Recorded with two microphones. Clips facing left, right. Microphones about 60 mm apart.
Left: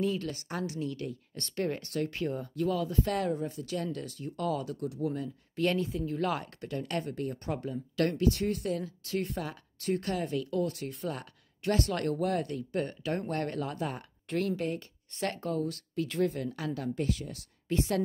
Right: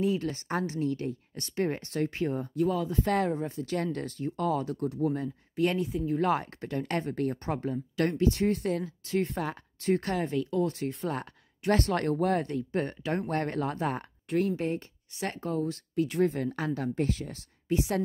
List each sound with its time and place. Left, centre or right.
0.0 s speech: right
1.3 s speech: centre
3.7 s speech: right
5.6 s speech: centre; by 7.2 s right
7.2 s speech: right
7.5 s speech: right
14.3 s speech: centre
15.2 s speech: centre
16.3 s speech: right
17.6 s a woman's voice: centre